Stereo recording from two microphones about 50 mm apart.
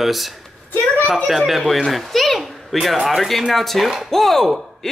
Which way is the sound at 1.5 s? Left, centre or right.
Centre.